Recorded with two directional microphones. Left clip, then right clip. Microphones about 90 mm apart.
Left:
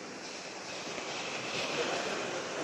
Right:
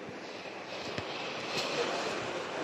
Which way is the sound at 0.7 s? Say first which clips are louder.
Right 1 dB; 30° left (ahead or behind).